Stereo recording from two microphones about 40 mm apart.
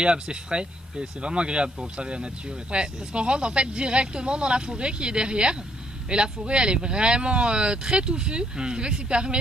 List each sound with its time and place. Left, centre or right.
0.0 s speech: right